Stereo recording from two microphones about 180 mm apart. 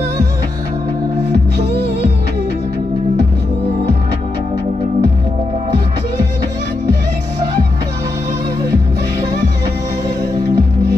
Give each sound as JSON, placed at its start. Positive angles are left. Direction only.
{"t": 1.3, "sound": "music", "side_deg": -65}
{"t": 10.0, "sound": "music", "side_deg": -20}